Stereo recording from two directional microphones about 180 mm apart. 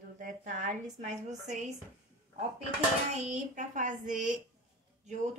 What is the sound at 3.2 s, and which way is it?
A woman's voice, 45° right (ahead or behind).